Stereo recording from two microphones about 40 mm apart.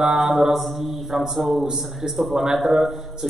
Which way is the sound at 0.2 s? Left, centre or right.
Centre.